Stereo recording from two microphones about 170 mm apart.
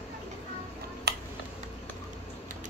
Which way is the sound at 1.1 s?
75° right (ahead or behind).